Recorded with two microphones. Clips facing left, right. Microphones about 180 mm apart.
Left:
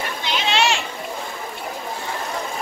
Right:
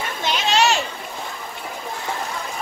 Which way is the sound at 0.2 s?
45° right (ahead or behind).